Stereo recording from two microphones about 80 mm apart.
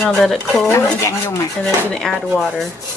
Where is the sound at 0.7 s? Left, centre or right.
Left.